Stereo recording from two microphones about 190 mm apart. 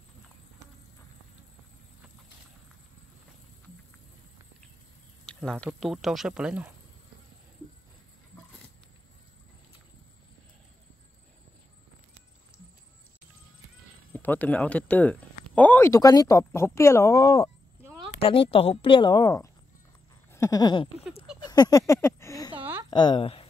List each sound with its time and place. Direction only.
5.2 s speech: 5° left (ahead or behind)
14.1 s speech: 10° left (ahead or behind)
18.2 s a woman's voice: 30° left (ahead or behind)
21.5 s a sound: 20° left (ahead or behind)
22.8 s speech: 25° left (ahead or behind)